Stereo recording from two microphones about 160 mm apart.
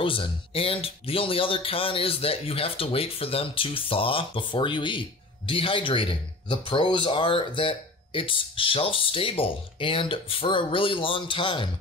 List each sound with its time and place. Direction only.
0.0 s speech: 35° left (ahead or behind)